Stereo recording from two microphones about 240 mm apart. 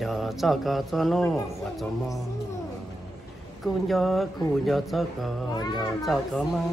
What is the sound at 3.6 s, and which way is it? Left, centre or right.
Speech, centre.